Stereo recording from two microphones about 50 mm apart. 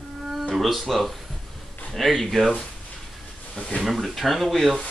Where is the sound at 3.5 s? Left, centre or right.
Left.